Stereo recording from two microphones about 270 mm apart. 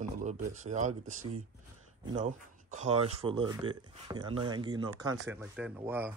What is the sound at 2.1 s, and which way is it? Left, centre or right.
Speech, right.